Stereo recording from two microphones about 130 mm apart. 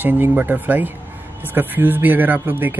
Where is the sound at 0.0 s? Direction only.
15° right (ahead or behind).